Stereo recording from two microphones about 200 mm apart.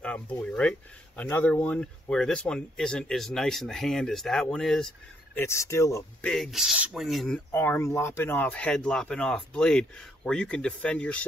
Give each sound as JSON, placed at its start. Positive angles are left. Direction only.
{"t": 0.0, "sound": "speech", "side_deg": 5}
{"t": 5.4, "sound": "speech", "side_deg": 15}
{"t": 6.3, "sound": "speech", "side_deg": 0}